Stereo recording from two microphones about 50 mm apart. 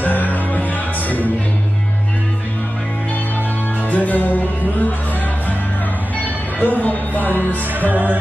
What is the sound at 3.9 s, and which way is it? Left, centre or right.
Music, left.